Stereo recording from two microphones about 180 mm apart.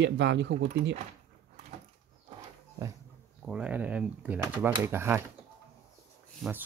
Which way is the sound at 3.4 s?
5° right (ahead or behind).